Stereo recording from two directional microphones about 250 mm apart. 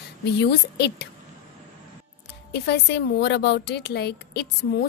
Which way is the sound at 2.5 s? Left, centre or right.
Left.